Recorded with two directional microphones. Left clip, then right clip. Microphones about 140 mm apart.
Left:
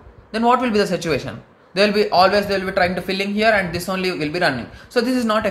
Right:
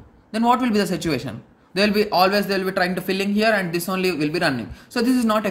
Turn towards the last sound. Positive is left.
turn(degrees=-40)  # may be behind; listen again after turning